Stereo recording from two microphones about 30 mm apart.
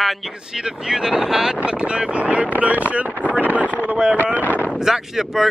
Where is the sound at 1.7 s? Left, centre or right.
Right.